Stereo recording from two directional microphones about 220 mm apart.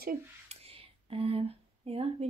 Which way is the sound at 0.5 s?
25° right (ahead or behind).